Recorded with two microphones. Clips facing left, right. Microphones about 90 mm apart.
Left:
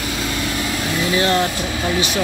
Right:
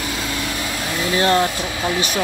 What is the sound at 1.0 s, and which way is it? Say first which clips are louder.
Speech: right 1 dB; 30° right (ahead or behind).